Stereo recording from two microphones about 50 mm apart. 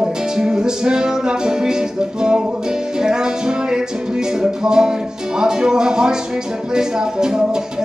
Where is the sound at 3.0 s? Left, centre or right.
Centre.